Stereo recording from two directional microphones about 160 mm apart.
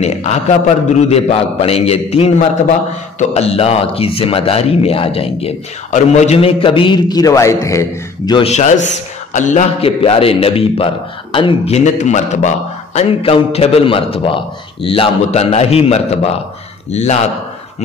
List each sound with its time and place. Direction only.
0.0 s a man's voice: 45° left (ahead or behind); by 7.8 s 20° left (ahead or behind)
8.5 s a man's voice: 45° left (ahead or behind)